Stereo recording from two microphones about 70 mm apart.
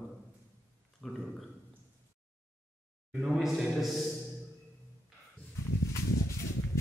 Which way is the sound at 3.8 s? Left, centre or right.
Centre.